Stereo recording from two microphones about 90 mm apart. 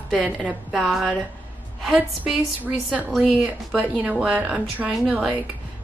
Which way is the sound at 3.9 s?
10° right (ahead or behind).